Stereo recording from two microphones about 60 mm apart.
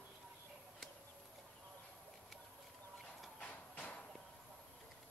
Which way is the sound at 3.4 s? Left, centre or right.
Left.